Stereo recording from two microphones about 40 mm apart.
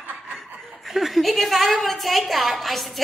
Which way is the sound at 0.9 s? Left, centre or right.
Centre.